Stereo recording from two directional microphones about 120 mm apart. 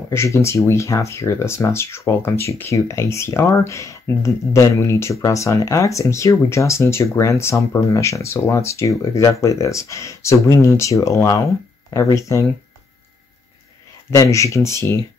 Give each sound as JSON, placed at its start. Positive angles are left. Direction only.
{"t": 0.1, "sound": "speech", "side_deg": 25}
{"t": 14.1, "sound": "speech", "side_deg": 25}